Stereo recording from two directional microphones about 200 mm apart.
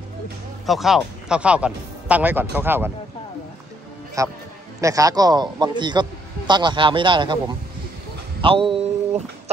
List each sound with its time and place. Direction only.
0.7 s speech: centre (ahead or behind)
4.2 s a man's voice: 15° right (ahead or behind); by 9.2 s 30° right (ahead or behind)